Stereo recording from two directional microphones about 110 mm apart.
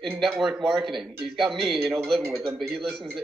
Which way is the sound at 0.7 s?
Centre (ahead or behind).